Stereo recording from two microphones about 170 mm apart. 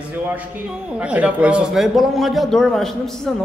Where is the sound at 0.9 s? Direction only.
5° right (ahead or behind).